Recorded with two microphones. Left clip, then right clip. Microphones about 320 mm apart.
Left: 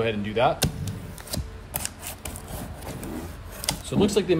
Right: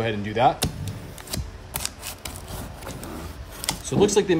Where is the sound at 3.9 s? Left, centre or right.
Right.